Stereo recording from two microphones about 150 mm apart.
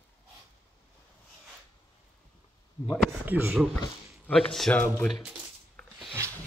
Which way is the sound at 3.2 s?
10° right (ahead or behind).